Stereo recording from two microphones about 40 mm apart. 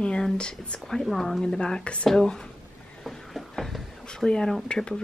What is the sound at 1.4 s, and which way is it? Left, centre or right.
Speech, centre.